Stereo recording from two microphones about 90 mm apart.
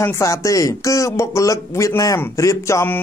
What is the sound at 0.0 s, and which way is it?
Speech, 35° left (ahead or behind).